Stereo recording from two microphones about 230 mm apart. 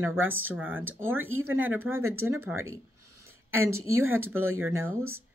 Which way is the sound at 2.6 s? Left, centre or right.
Right.